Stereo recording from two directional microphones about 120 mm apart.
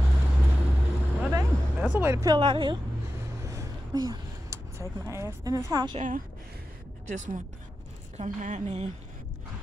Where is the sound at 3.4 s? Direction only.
25° right (ahead or behind).